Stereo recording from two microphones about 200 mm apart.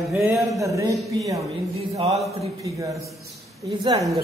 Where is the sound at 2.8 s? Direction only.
15° right (ahead or behind).